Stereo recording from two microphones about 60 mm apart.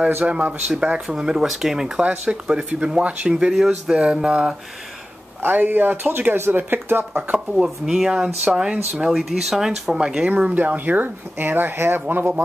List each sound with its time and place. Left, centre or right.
0.2 s speech: right
1.0 s speech: centre
5.4 s speech: right
7.5 s speech: centre
10.3 s speech: right